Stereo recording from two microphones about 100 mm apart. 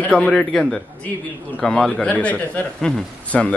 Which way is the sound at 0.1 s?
10° left (ahead or behind).